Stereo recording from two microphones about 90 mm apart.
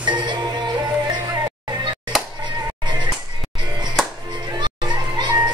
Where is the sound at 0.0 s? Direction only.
55° right (ahead or behind).